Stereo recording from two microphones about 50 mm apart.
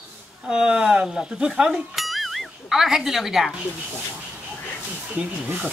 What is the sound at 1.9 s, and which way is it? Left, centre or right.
Music, centre.